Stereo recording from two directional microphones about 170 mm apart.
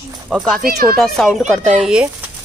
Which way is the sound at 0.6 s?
60° right (ahead or behind).